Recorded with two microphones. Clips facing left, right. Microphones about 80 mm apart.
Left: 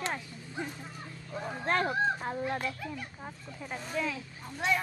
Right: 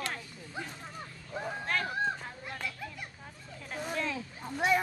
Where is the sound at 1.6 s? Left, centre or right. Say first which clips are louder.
Left 5 dB; left.